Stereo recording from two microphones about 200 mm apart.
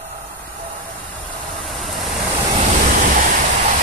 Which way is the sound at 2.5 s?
35° right (ahead or behind).